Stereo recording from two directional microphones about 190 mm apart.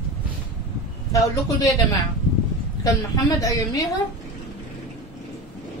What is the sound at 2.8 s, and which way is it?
A woman's voice, 20° left (ahead or behind).